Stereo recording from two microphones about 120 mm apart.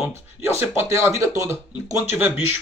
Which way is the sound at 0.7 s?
20° right (ahead or behind).